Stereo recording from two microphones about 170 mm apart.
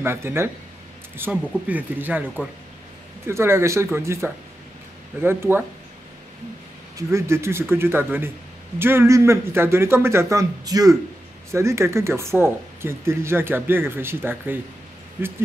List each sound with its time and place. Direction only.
0.0 s speech: 15° right (ahead or behind)
7.0 s speech: 15° right (ahead or behind)